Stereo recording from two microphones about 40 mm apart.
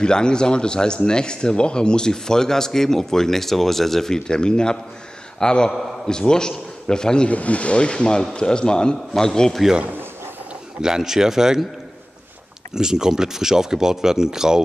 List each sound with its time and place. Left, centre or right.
0.0 s a man's voice: left
7.2 s a man's voice: left; by 9.5 s centre
10.8 s speech: centre
12.7 s speech: centre